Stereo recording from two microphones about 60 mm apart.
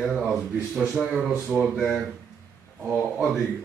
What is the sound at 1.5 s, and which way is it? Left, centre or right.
Speech, right.